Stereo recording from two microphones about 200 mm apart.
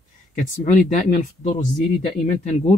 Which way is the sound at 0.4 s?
40° left (ahead or behind).